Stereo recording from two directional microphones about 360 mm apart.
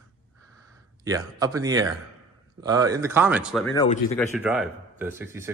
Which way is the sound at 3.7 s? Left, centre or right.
Centre.